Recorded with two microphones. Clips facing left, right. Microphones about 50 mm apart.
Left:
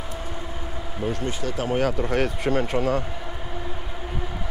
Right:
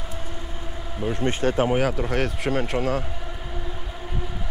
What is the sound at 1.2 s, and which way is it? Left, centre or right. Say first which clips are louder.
Speech: right 6 dB; right.